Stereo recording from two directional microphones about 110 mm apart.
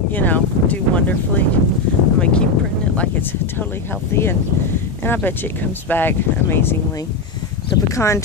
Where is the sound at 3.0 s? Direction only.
20° left (ahead or behind).